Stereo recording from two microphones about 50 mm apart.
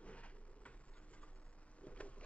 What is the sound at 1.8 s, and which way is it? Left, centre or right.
Vehicle, left.